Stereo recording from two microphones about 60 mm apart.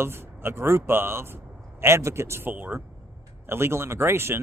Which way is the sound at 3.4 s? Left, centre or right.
Right.